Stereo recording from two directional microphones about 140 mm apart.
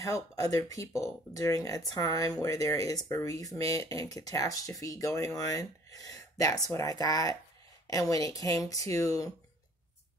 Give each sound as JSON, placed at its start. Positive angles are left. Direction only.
{"t": 0.0, "sound": "speech", "side_deg": 25}